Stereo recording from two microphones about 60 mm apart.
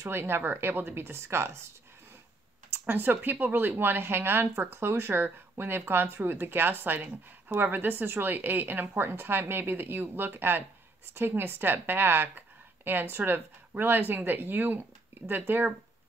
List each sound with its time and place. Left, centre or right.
0.0 s speech: right
2.7 s speech: right